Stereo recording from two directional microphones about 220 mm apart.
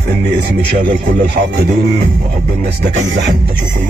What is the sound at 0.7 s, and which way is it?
Music, 40° right (ahead or behind).